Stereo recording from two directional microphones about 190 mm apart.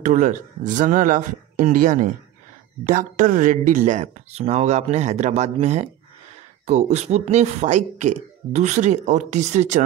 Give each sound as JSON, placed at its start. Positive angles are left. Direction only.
{"t": 0.0, "sound": "speech", "side_deg": -40}